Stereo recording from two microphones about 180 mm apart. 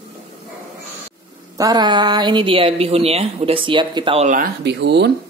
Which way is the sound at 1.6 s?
20° right (ahead or behind).